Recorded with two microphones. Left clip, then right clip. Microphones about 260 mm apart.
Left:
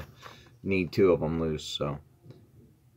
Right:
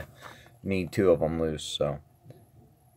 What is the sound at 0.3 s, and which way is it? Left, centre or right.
Speech, right.